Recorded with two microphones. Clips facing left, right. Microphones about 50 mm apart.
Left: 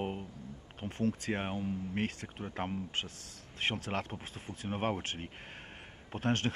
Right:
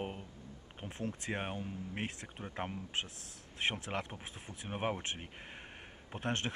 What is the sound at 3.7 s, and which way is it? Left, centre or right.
Speech, left.